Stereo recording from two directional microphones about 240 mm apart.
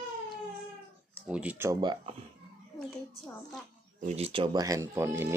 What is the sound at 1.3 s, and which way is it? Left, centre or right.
Speech, centre.